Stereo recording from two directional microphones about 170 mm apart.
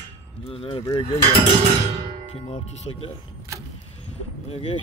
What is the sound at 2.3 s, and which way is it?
Speech, 35° left (ahead or behind).